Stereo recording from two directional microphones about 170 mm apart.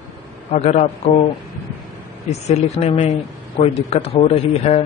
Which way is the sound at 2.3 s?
40° left (ahead or behind).